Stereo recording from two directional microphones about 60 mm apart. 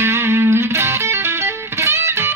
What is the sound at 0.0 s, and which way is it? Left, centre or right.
Music, right.